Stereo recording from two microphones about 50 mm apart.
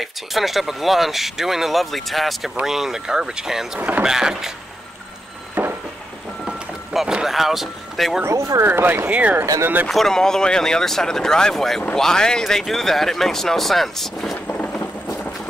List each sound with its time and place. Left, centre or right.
0.0 s speech: centre
5.5 s a sound: right
6.4 s vehicle: centre
7.2 s speech: centre
8.3 s speech: right
8.6 s speech: right
9.0 s speech: right
9.8 s speech: centre